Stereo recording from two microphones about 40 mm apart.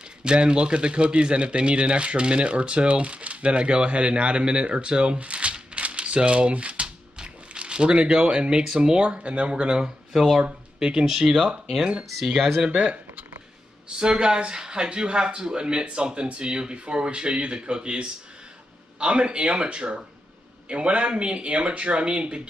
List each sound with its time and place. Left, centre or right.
0.2 s speech: right
11.1 s speech: centre
12.6 s speech: right
13.8 s speech: right